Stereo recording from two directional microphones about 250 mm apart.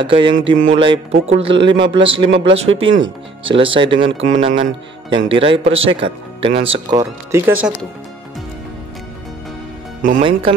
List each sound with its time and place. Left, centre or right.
0.0 s speech: centre
0.4 s speech: right
0.7 s speech: centre
2.7 s speech: right
3.4 s speech: right
7.2 s speech: centre